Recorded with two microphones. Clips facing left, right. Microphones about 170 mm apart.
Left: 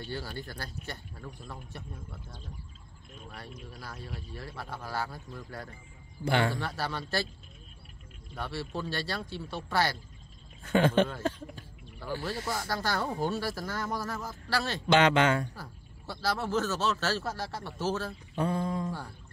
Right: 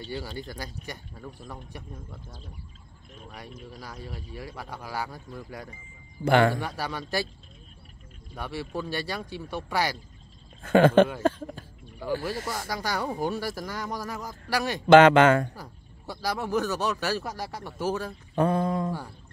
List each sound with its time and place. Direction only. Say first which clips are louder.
0.1 s speech: right 4 dB; 15° right (ahead or behind)
3.3 s speech: right 4 dB; 15° right (ahead or behind)
6.2 s speech: right 7 dB; 55° right (ahead or behind)
6.6 s speech: right 2 dB; 15° right (ahead or behind)
8.4 s speech: right 3 dB; 15° right (ahead or behind)
10.7 s speech: right 7 dB; 90° right
11.2 s a sound: right 7 dB; 50° right (ahead or behind)
12.5 s speech: right 1 dB; 10° right (ahead or behind)
14.9 s speech: right 9 dB; 50° right (ahead or behind)
15.5 s speech: right 2 dB; 15° right (ahead or behind)
18.3 s a sound: right 6 dB; 55° right (ahead or behind)